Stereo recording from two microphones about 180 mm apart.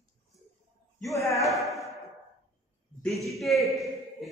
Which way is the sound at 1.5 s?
15° left (ahead or behind).